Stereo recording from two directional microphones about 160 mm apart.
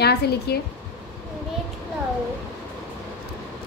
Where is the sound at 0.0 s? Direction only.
90° left.